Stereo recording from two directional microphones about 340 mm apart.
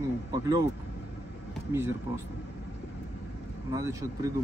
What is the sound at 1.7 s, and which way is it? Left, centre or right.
Speech, centre.